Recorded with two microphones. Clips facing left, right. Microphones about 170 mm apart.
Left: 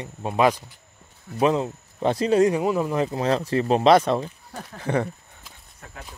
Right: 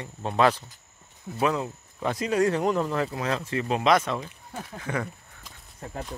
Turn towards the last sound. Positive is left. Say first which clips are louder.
# left 6 dB
turn(degrees=30)  # may be behind; listen again after turning